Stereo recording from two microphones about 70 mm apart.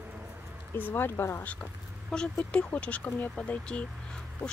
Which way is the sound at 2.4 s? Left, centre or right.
Centre.